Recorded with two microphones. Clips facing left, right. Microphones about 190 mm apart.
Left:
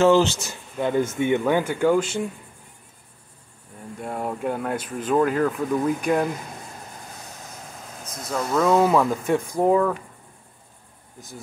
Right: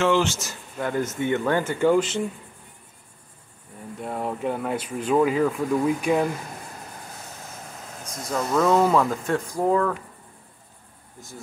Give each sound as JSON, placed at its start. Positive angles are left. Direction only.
{"t": 0.0, "sound": "speech", "side_deg": 35}
{"t": 0.7, "sound": "speech", "side_deg": 20}
{"t": 4.0, "sound": "speech", "side_deg": 0}
{"t": 8.3, "sound": "speech", "side_deg": 0}
{"t": 11.1, "sound": "speech", "side_deg": 15}